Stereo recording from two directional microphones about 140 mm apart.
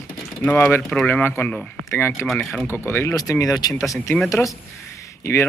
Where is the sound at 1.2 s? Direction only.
15° left (ahead or behind).